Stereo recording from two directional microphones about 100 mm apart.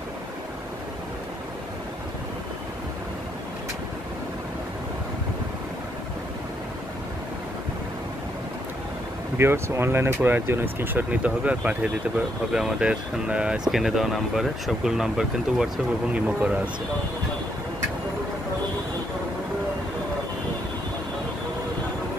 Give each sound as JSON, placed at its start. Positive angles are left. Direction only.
{"t": 9.4, "sound": "speech", "side_deg": -25}